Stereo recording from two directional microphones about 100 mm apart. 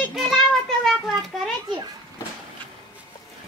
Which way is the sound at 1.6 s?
50° right (ahead or behind).